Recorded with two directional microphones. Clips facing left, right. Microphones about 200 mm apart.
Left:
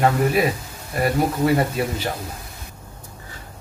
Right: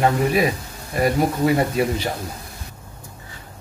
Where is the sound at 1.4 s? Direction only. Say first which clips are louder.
Right 2 dB; centre (ahead or behind).